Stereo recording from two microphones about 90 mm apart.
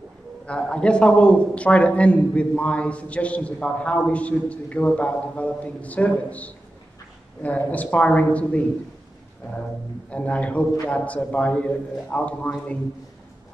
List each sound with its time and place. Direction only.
0.5 s a man's voice: 10° left (ahead or behind)
10.1 s a man's voice: 15° left (ahead or behind)